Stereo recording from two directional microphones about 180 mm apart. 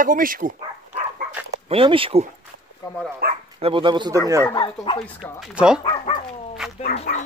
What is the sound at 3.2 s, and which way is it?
Speech, 55° right (ahead or behind).